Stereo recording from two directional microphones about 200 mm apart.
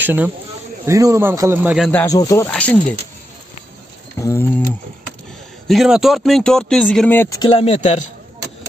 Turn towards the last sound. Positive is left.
turn(degrees=30)  # may be behind; listen again after turning